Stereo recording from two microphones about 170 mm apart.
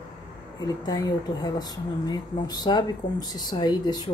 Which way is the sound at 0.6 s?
25° left (ahead or behind).